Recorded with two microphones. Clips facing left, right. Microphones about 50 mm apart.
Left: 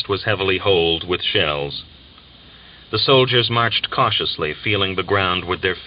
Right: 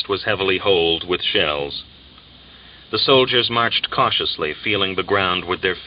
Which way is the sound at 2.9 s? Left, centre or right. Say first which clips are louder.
Even; centre.